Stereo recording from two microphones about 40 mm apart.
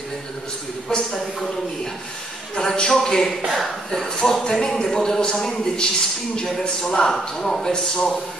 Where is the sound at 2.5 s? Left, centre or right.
Centre.